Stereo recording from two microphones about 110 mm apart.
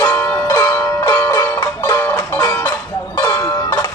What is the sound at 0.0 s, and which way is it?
Music, 20° left (ahead or behind).